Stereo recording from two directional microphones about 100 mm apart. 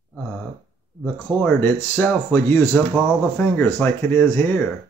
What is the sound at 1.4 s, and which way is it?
A man's voice, 20° left (ahead or behind).